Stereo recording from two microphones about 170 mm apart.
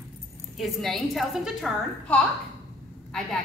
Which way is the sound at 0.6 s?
Centre (ahead or behind).